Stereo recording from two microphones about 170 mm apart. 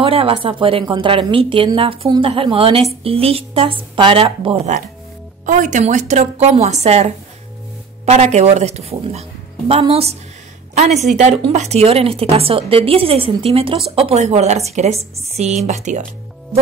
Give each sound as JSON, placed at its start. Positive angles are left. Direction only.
{"t": 0.0, "sound": "a woman's voice", "side_deg": -35}